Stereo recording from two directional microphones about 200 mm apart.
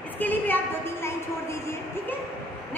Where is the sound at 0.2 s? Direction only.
10° left (ahead or behind).